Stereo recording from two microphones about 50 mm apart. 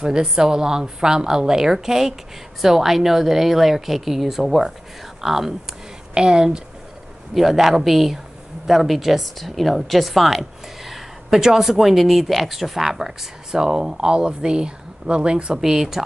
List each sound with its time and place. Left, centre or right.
0.0 s speech: centre
6.1 s speech: centre
7.3 s speech: centre